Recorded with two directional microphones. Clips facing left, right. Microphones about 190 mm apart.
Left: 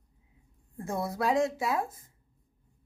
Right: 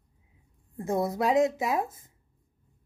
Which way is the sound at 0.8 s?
20° right (ahead or behind).